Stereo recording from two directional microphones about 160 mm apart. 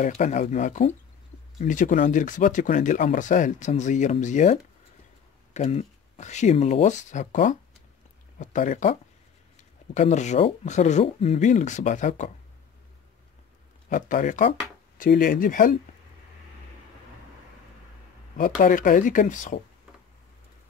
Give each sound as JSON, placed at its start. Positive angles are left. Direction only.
{"t": 0.1, "sound": "speech", "side_deg": 50}
{"t": 9.9, "sound": "speech", "side_deg": 45}
{"t": 13.8, "sound": "speech", "side_deg": 55}
{"t": 18.6, "sound": "speech", "side_deg": 55}